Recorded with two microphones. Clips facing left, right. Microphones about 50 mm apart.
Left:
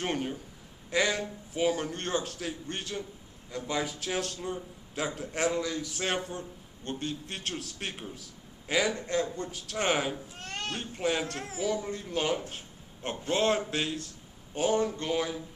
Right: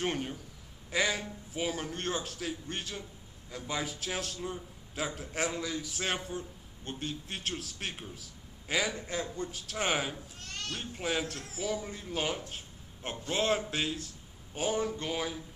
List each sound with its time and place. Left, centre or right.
0.0 s a man's voice: centre
10.4 s sheep: left
10.8 s a man's voice: centre
11.3 s a man's voice: left
11.6 s a man's voice: centre